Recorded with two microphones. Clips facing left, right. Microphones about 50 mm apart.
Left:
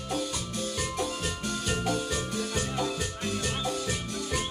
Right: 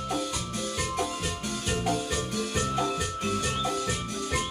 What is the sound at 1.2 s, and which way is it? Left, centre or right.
Music, right.